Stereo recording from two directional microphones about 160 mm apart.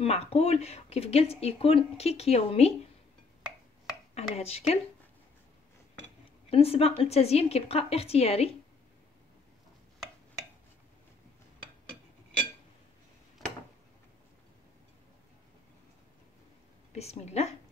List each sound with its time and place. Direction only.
0.0 s speech: 40° left (ahead or behind)
4.1 s speech: 40° left (ahead or behind)
6.5 s speech: 40° left (ahead or behind)
16.9 s speech: 40° left (ahead or behind)